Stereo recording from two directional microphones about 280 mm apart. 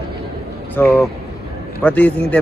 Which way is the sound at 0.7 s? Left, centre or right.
Centre.